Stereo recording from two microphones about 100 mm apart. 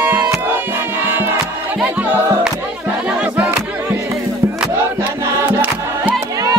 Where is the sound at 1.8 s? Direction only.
20° right (ahead or behind).